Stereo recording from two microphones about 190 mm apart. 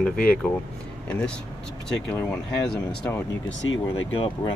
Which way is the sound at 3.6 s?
90° left.